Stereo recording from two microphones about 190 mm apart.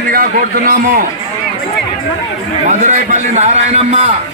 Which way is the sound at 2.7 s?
40° right (ahead or behind).